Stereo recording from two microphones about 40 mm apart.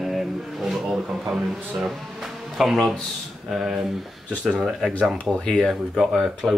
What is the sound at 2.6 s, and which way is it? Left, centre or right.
A man's voice, centre.